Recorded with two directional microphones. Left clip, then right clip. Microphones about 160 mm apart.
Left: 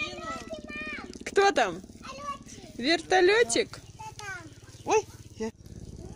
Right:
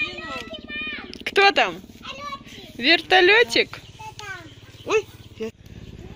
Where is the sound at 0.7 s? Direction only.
10° left (ahead or behind).